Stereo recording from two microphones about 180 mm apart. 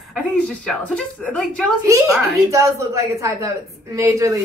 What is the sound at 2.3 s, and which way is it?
A woman's voice, 15° right (ahead or behind).